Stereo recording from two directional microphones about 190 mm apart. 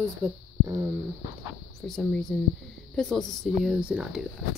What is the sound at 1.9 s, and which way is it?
A woman's voice, 5° left (ahead or behind).